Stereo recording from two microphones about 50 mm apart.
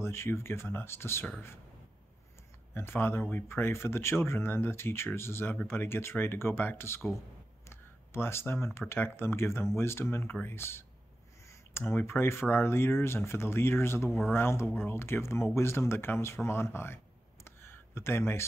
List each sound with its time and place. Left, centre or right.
0.0 s speech: left
2.7 s speech: left
17.5 s a sound: left